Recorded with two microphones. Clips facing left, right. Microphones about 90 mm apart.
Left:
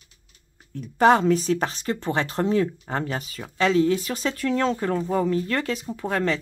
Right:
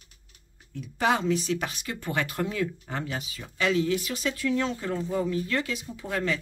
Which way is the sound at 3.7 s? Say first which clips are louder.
Left 4 dB; 35° left (ahead or behind).